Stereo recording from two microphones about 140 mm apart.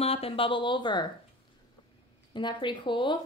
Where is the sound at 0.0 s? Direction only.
45° left (ahead or behind).